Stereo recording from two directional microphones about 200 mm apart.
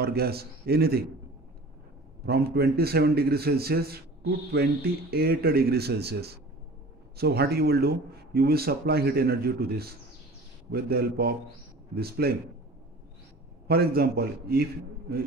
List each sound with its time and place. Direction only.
0.0 s speech: 50° right (ahead or behind)
2.2 s speech: 50° right (ahead or behind)
13.7 s speech: 50° right (ahead or behind)